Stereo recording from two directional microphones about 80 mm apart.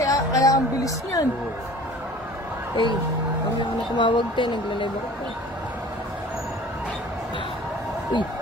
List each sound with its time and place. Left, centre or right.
0.0 s a sound: left
2.7 s speech: left
3.9 s speech: left